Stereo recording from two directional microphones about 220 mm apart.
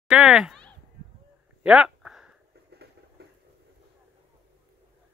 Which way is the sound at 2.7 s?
45° right (ahead or behind).